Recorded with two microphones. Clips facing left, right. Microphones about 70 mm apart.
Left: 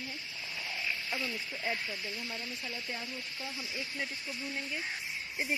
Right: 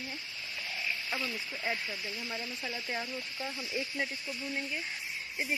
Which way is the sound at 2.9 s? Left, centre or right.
Right.